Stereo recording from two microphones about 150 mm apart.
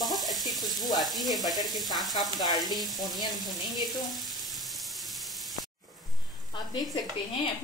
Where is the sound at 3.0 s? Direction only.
Centre (ahead or behind).